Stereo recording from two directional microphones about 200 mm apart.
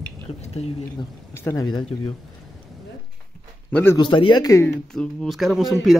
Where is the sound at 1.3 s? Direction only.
15° left (ahead or behind).